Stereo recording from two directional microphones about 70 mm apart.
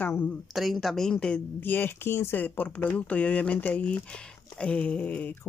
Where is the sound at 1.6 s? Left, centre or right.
Left.